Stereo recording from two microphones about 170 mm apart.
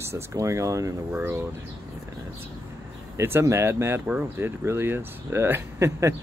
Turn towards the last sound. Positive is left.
turn(degrees=-15)  # may be behind; listen again after turning